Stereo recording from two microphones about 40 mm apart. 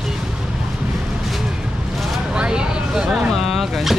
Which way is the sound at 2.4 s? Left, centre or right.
Right.